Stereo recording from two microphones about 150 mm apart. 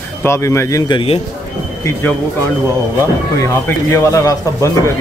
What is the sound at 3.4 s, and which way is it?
Speech, 20° left (ahead or behind).